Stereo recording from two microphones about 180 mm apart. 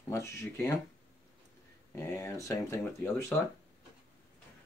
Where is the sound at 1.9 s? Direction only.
15° left (ahead or behind).